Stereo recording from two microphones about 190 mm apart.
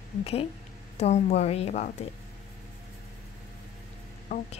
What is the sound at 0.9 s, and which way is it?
A woman's voice, 35° left (ahead or behind).